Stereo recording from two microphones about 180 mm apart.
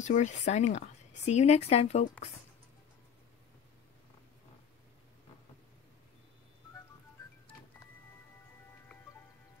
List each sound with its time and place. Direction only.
0.0 s a woman's voice: 40° left (ahead or behind)